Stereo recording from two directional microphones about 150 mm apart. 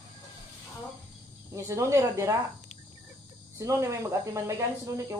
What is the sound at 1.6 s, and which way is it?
Speech, 20° right (ahead or behind).